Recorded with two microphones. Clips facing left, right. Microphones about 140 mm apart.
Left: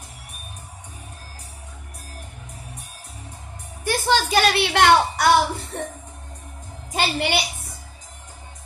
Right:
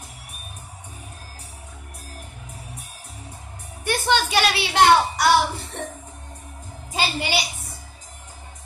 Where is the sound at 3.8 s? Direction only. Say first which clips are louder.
Left 1 dB; 35° left (ahead or behind).